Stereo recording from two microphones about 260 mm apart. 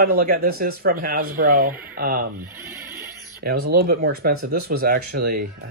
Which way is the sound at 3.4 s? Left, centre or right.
Right.